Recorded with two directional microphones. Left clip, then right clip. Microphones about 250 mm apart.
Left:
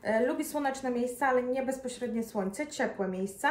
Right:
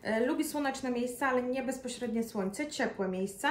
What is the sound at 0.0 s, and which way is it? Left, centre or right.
A woman's voice, centre.